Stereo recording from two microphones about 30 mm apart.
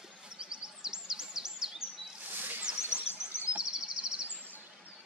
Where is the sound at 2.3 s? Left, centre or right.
Right.